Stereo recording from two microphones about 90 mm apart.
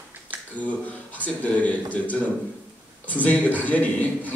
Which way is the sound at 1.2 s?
15° left (ahead or behind).